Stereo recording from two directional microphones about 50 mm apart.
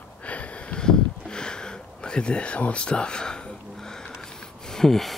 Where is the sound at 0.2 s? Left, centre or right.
Left.